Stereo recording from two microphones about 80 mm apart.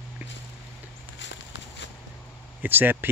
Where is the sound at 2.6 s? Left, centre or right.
Right.